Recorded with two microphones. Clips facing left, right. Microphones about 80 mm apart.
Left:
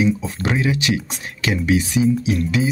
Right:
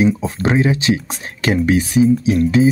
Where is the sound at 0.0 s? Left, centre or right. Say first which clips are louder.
Right 4 dB; right.